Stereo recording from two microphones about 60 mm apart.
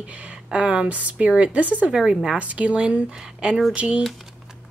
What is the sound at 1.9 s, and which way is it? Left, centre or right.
A woman's voice, centre.